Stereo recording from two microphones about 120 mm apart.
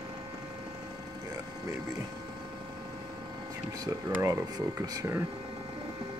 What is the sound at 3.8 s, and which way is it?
Speech, 30° right (ahead or behind).